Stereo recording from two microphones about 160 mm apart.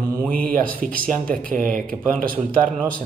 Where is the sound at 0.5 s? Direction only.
60° right (ahead or behind).